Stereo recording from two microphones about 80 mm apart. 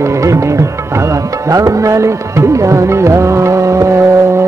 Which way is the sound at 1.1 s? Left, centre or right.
Right.